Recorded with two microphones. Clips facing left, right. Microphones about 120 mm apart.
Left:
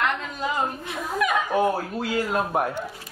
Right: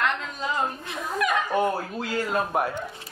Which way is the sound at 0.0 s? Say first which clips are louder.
Left 1 dB; 5° left (ahead or behind).